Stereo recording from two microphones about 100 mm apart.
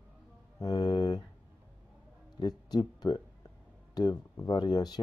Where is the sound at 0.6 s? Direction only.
45° left (ahead or behind).